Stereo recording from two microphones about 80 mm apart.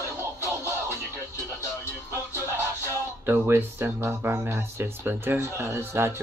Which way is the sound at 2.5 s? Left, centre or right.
Right.